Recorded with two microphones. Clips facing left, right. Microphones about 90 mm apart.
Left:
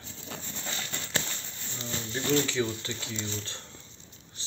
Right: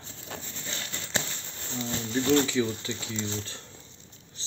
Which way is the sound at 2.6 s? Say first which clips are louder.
Right 2 dB; 20° left (ahead or behind).